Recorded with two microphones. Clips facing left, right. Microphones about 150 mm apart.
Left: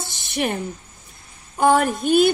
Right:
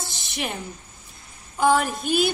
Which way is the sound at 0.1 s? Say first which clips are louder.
Left 10 dB; 45° left (ahead or behind).